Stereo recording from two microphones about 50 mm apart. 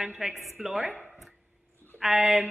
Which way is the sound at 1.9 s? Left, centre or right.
Centre.